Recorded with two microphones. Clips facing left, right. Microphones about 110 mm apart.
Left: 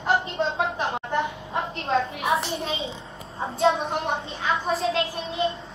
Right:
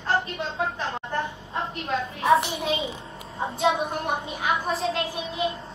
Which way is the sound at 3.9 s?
25° left (ahead or behind).